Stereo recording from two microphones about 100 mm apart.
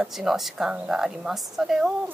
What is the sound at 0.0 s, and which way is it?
A woman's voice, 5° right (ahead or behind).